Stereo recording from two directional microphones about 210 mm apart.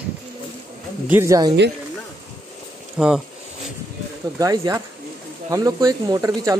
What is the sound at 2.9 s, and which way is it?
Speech, 5° right (ahead or behind).